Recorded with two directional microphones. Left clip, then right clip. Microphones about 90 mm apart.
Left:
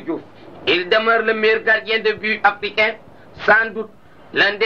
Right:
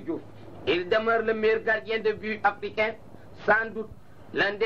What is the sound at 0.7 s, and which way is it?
A man's voice, 30° right (ahead or behind).